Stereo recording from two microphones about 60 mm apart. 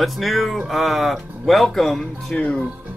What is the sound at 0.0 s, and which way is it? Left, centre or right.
Speech, centre.